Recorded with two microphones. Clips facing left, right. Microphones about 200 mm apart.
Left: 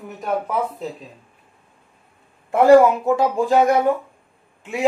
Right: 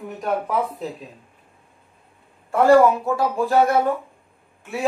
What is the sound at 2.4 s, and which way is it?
Speech, 20° left (ahead or behind).